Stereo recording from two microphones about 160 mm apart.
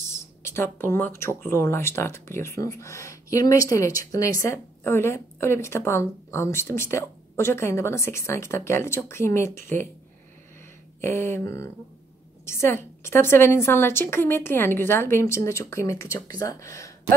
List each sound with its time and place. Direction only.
0.0 s a sound: 15° left (ahead or behind)
0.9 s a woman's voice: 15° left (ahead or behind)
11.0 s a woman's voice: 15° left (ahead or behind)